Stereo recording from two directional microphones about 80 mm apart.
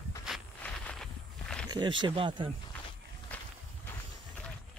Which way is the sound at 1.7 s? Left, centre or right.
Right.